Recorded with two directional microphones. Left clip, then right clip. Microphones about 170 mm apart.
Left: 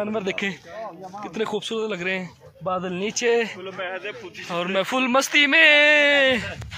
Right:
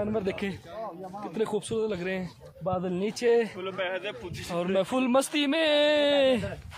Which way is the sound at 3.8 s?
50° right (ahead or behind).